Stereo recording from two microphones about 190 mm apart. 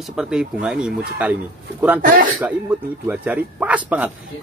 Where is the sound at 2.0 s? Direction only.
45° right (ahead or behind).